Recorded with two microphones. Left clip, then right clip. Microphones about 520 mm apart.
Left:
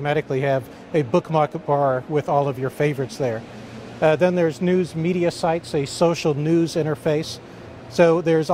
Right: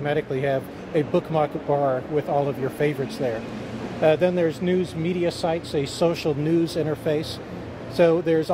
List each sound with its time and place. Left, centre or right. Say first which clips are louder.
0.0 s speech: left 2 dB; left